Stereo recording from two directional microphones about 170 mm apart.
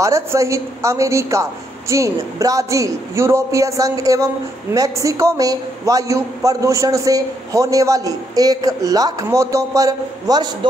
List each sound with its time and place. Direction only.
0.0 s a man's voice: 20° right (ahead or behind)